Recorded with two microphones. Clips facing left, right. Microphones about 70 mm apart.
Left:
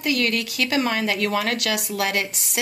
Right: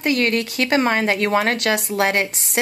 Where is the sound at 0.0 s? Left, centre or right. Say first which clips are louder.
Right 4 dB; right.